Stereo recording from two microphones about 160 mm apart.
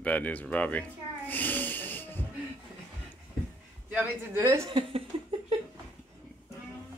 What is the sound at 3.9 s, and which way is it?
Speech, 15° right (ahead or behind).